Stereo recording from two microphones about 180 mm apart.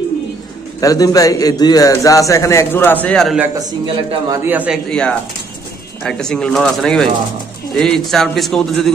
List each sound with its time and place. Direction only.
0.7 s a man's voice: 20° left (ahead or behind); by 3.4 s centre (ahead or behind)
3.5 s speech: 20° right (ahead or behind)
4.5 s a man's voice: 10° right (ahead or behind)
4.8 s a man's voice: 5° left (ahead or behind)